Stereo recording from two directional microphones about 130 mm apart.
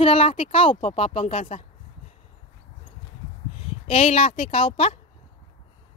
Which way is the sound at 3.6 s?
50° left (ahead or behind).